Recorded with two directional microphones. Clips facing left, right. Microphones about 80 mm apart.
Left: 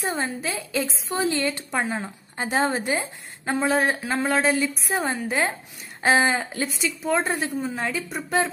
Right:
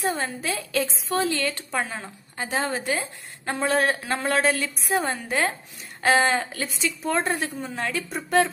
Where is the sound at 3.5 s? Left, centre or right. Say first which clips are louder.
Left 1 dB; centre.